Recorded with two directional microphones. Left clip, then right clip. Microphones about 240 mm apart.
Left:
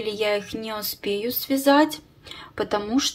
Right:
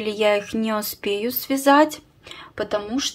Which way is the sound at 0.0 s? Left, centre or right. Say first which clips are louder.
Right 4 dB; centre.